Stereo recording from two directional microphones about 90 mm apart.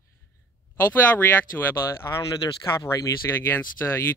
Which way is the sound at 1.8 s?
45° left (ahead or behind).